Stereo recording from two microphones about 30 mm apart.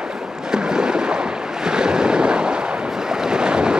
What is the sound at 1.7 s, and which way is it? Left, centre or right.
Vehicle, right.